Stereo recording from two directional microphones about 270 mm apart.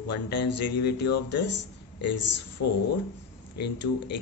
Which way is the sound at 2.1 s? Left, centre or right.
Left.